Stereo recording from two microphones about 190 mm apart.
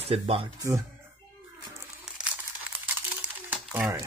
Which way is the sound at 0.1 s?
30° right (ahead or behind).